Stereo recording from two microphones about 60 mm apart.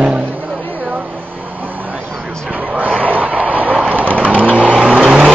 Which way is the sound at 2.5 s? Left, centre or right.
Right.